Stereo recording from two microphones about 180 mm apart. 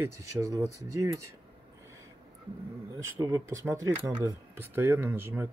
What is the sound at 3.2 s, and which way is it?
Speech, 20° right (ahead or behind).